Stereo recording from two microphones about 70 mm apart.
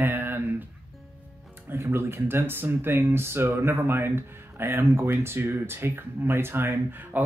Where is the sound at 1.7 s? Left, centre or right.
Right.